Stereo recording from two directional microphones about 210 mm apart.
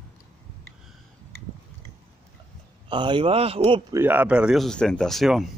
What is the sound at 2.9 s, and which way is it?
Speech, 20° right (ahead or behind).